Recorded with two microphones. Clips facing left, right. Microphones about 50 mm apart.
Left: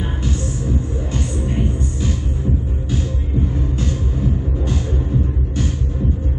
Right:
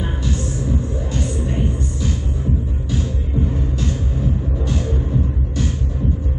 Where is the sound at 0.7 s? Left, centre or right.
Left.